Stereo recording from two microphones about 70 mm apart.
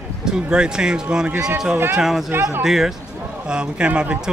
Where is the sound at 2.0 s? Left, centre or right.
Centre.